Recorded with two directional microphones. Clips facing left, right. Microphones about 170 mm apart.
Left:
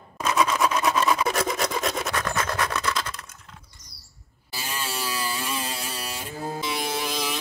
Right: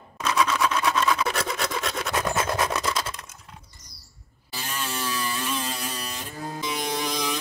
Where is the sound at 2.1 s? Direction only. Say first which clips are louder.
Right 2 dB; 20° right (ahead or behind).